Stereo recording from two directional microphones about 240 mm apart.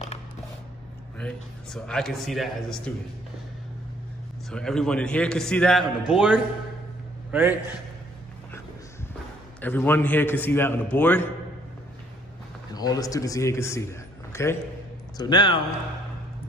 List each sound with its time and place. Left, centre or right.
1.2 s a man's voice: centre
4.5 s a man's voice: centre
9.6 s a man's voice: centre
12.7 s a man's voice: centre